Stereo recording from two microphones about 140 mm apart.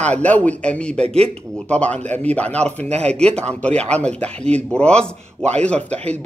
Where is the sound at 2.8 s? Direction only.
50° right (ahead or behind).